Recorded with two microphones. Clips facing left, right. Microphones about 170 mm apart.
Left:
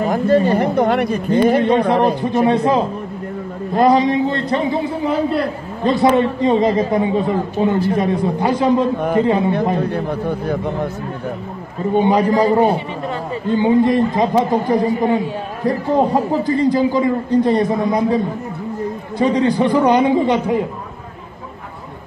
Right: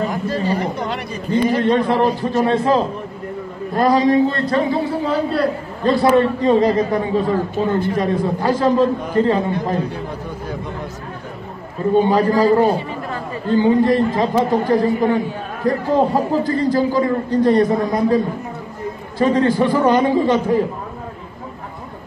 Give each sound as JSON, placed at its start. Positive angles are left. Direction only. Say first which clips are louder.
{"t": 0.1, "sound": "a man's voice", "louder": "left 6 dB", "side_deg": 55}
{"t": 1.6, "sound": "a man's voice", "louder": "left 1 dB", "side_deg": 20}
{"t": 9.8, "sound": "a man's voice", "louder": "left 7 dB", "side_deg": 60}
{"t": 12.0, "sound": "speech", "louder": "left 1 dB", "side_deg": 20}